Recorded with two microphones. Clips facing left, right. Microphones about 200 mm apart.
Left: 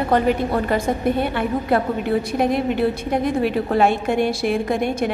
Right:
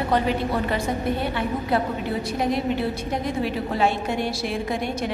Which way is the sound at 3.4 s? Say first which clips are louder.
Left 5 dB; 55° left (ahead or behind).